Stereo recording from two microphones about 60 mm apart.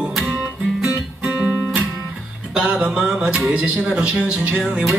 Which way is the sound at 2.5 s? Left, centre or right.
Centre.